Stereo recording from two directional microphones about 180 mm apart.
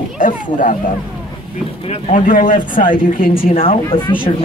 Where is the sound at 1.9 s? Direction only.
45° left (ahead or behind).